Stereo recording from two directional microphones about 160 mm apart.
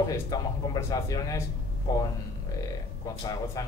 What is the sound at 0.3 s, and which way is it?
Speech, 20° left (ahead or behind).